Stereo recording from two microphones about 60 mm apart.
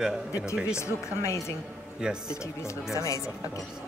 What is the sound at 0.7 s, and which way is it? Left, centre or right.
Speech, left.